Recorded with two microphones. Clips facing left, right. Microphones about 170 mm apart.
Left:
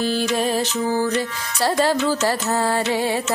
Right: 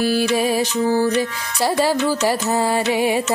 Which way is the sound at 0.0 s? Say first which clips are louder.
Right 3 dB; 10° right (ahead or behind).